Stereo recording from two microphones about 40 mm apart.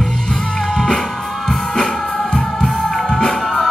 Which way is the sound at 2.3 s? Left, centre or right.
Left.